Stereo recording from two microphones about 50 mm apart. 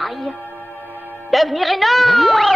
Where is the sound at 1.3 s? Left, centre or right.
Centre.